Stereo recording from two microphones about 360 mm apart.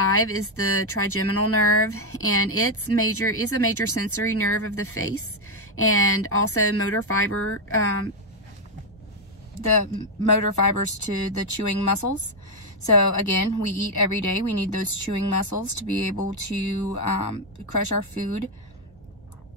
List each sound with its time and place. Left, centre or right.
0.0 s speech: left
10.5 s speech: left